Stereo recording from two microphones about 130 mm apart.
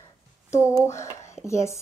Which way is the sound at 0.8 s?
25° left (ahead or behind).